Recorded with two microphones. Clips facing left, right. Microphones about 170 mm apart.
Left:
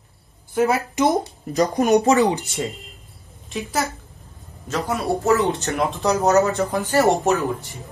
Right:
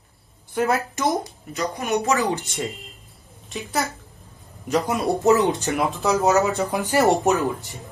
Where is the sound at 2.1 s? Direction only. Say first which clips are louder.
Left 5 dB; 15° left (ahead or behind).